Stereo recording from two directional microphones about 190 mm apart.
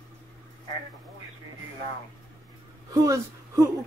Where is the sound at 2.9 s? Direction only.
15° right (ahead or behind).